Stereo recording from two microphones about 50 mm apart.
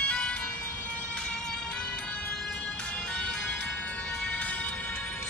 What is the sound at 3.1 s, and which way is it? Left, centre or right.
Music, centre.